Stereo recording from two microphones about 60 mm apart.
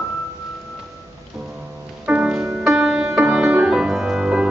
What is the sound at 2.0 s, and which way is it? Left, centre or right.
Music, right.